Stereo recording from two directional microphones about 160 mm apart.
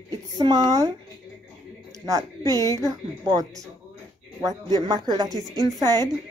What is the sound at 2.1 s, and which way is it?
A woman's voice, 20° right (ahead or behind).